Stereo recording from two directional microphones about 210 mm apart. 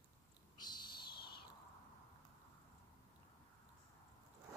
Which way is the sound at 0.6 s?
20° left (ahead or behind).